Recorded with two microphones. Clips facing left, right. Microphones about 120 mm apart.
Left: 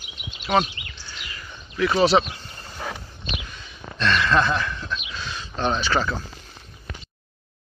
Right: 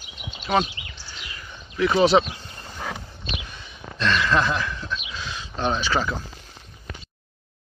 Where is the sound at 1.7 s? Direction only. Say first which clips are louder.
Right 1 dB; 20° right (ahead or behind).